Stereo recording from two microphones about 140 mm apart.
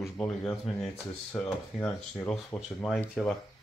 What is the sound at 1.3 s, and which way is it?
Speech, 10° left (ahead or behind).